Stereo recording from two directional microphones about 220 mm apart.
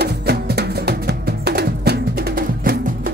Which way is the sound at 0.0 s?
45° right (ahead or behind).